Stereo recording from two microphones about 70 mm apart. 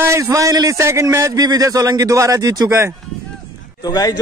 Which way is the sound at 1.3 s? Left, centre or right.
Right.